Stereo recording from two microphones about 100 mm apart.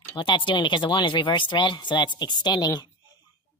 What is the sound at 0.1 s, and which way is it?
Speech, 55° left (ahead or behind).